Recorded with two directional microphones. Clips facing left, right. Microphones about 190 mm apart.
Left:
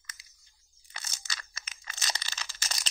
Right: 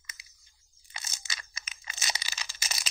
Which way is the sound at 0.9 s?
15° right (ahead or behind).